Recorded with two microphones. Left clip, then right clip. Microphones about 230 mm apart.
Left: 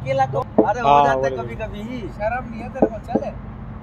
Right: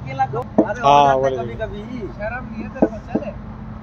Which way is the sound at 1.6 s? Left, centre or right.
Left.